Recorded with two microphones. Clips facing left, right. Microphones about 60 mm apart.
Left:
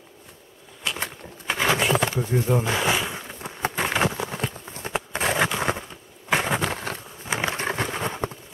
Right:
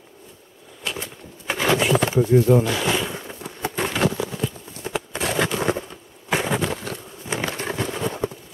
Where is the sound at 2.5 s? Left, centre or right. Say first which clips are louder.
Right 4 dB; left.